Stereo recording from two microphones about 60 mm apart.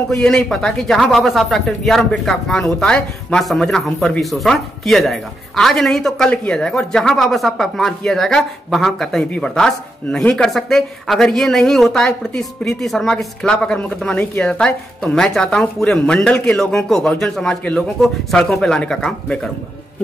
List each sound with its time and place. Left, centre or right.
0.1 s a woman's voice: centre
6.1 s a woman's voice: centre
13.6 s speech: centre